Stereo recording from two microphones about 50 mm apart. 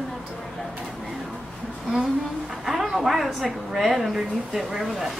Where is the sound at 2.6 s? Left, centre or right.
Centre.